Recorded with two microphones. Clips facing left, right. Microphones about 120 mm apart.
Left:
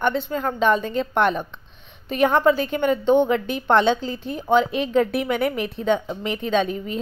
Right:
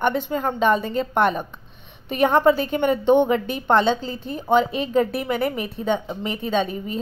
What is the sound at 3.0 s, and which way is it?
Speech, 15° right (ahead or behind).